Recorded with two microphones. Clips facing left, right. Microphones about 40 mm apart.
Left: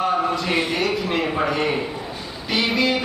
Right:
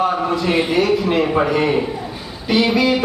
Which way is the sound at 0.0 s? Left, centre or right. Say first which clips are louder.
Right 3 dB; centre.